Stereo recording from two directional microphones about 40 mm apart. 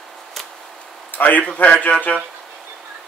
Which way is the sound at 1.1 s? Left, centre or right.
Left.